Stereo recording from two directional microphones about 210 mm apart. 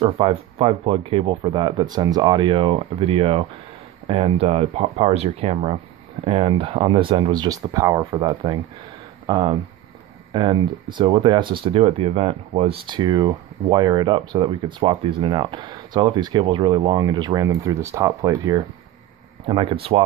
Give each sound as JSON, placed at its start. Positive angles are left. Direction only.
{"t": 0.0, "sound": "speech", "side_deg": -30}